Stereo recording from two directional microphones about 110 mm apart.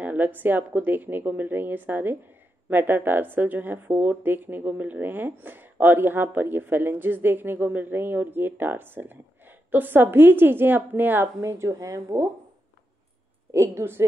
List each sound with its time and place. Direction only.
0.0 s a woman's voice: 15° right (ahead or behind)
13.5 s a woman's voice: 25° right (ahead or behind)